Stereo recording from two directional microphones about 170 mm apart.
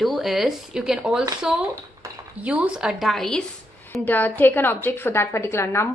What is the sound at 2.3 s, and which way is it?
A woman's voice, 10° right (ahead or behind).